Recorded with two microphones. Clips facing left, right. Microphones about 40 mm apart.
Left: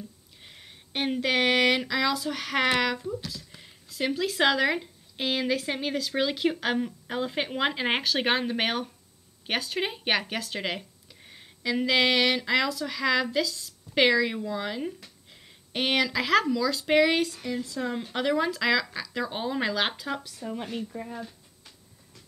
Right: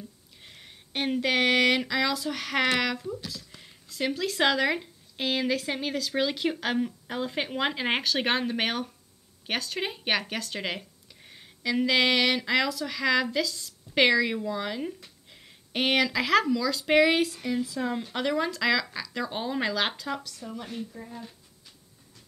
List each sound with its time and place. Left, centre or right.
0.4 s speech: centre
20.2 s speech: left
20.7 s speech: left